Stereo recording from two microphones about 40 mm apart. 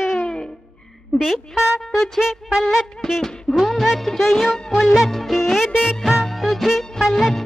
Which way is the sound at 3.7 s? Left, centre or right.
Centre.